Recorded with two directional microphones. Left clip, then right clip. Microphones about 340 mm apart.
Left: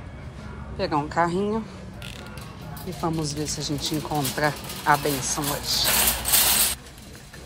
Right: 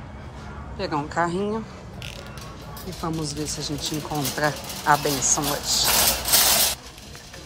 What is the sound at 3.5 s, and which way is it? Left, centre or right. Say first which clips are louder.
Speech: even; centre.